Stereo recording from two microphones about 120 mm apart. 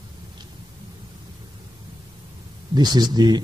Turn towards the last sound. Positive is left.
turn(degrees=-35)  # may be behind; listen again after turning